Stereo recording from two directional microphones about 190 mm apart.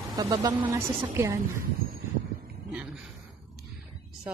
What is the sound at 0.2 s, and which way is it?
A woman's voice, 20° right (ahead or behind).